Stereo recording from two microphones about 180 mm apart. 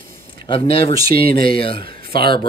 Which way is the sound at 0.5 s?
30° left (ahead or behind).